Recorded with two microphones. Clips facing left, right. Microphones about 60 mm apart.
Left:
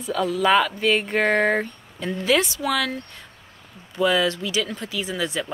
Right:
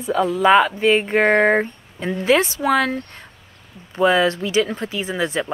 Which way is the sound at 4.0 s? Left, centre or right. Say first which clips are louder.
Right 4 dB; right.